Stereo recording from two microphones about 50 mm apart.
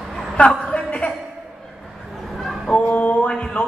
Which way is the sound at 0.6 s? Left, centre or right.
Left.